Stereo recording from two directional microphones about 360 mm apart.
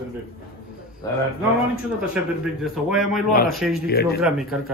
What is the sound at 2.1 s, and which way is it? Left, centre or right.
A man's voice, centre.